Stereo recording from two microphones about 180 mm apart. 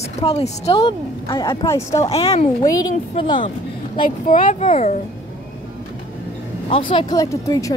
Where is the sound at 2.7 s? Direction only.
20° left (ahead or behind).